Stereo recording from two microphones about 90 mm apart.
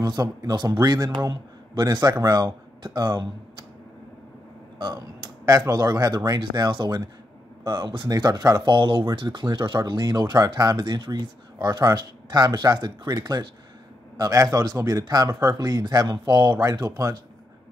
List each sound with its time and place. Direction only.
0.0 s speech: 45° right (ahead or behind)
4.7 s a sound: 50° right (ahead or behind)
5.7 s speech: 45° right (ahead or behind)
14.1 s speech: 40° right (ahead or behind)